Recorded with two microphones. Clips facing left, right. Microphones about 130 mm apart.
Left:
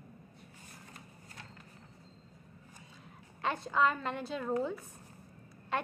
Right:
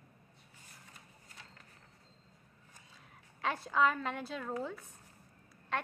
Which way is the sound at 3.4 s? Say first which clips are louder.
Left 1 dB; 5° right (ahead or behind).